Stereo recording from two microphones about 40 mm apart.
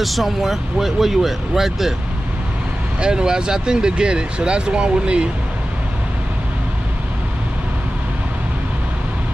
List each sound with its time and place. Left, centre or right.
0.0 s speech: centre
3.0 s speech: right